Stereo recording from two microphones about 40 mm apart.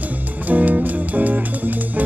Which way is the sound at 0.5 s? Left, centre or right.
Right.